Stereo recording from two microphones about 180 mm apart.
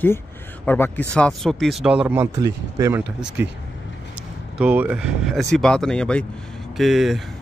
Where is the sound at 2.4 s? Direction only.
20° right (ahead or behind).